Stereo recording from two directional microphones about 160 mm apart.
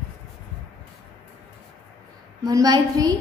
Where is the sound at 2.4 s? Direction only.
25° right (ahead or behind).